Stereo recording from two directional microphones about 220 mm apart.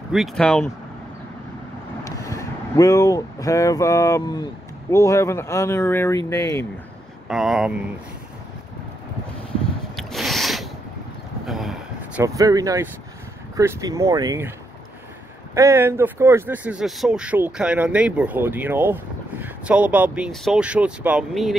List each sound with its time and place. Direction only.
0.1 s speech: centre (ahead or behind)
2.0 s speech: 15° left (ahead or behind)
7.2 s speech: centre (ahead or behind)
9.9 s a sound: centre (ahead or behind)
12.2 s speech: 15° right (ahead or behind)
15.5 s speech: 15° right (ahead or behind)